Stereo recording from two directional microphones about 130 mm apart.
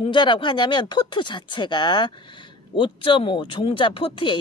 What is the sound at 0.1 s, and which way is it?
Speech, 40° left (ahead or behind).